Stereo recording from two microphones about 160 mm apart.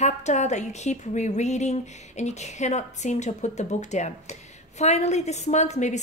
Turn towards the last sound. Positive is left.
turn(degrees=45)  # may be behind; listen again after turning